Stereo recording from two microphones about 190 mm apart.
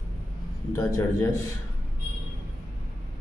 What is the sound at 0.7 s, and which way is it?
Speech, 15° left (ahead or behind).